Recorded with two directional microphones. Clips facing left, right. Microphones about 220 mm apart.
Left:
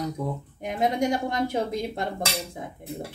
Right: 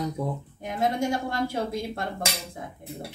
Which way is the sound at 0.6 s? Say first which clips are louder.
Left 2 dB; 20° left (ahead or behind).